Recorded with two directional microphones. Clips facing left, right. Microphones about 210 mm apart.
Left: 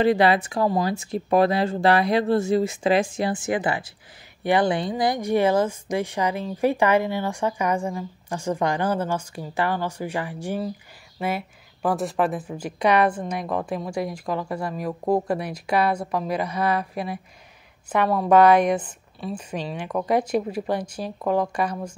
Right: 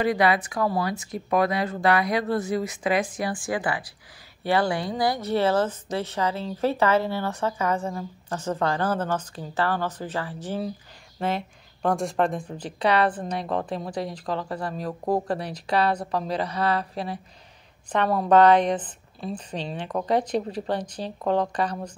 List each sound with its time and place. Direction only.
0.0 s a woman's voice: 30° left (ahead or behind); by 21.9 s 10° left (ahead or behind)